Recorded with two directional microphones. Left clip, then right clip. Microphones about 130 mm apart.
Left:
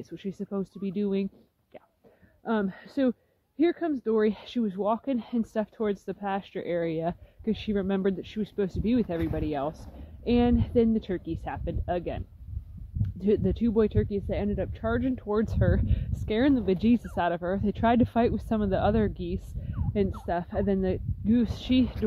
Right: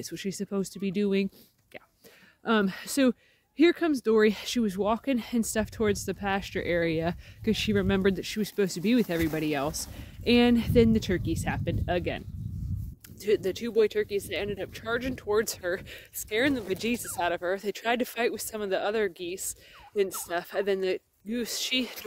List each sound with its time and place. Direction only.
0.0 s speech: 15° right (ahead or behind)
2.4 s speech: 30° right (ahead or behind)
4.3 s speech: 20° right (ahead or behind)